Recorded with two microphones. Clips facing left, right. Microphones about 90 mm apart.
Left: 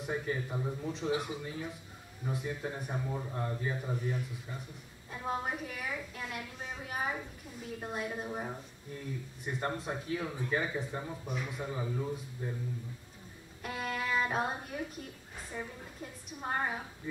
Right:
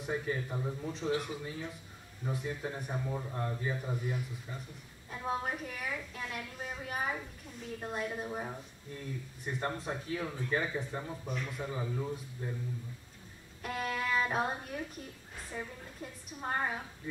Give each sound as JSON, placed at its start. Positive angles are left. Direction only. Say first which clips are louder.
{"t": 0.0, "sound": "speech", "louder": "even", "side_deg": 0}
{"t": 13.6, "sound": "a woman's voice", "louder": "right 1 dB", "side_deg": 0}